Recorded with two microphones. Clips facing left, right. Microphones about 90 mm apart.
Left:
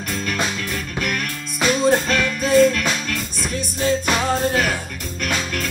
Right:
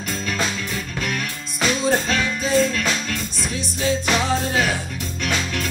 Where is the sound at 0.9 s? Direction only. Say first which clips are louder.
Left 3 dB; 55° left (ahead or behind).